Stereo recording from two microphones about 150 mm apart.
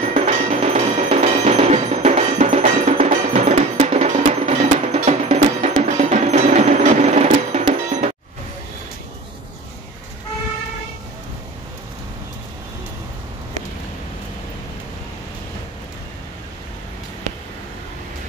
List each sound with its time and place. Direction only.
0.0 s music: 45° right (ahead or behind)